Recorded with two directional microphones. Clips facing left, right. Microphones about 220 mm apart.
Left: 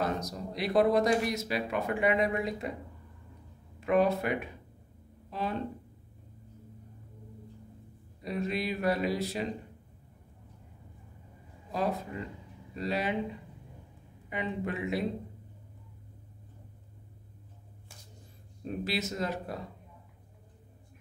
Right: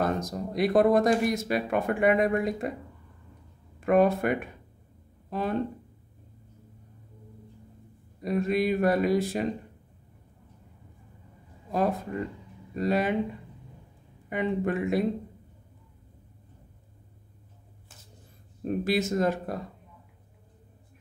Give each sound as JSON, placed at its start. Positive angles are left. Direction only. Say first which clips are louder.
{"t": 0.0, "sound": "speech", "louder": "right 4 dB", "side_deg": -50}
{"t": 3.8, "sound": "speech", "louder": "right 4 dB", "side_deg": -50}
{"t": 8.2, "sound": "speech", "louder": "right 7 dB", "side_deg": -50}
{"t": 12.7, "sound": "speech", "louder": "right 6 dB", "side_deg": -50}
{"t": 14.3, "sound": "speech", "louder": "right 7 dB", "side_deg": -50}
{"t": 18.6, "sound": "speech", "louder": "right 7 dB", "side_deg": -50}